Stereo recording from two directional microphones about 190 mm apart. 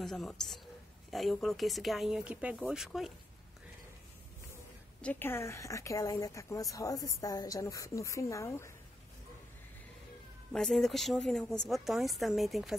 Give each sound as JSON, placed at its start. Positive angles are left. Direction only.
{"t": 0.0, "sound": "a woman's voice", "side_deg": 0}
{"t": 5.0, "sound": "a woman's voice", "side_deg": 10}
{"t": 10.5, "sound": "a woman's voice", "side_deg": 5}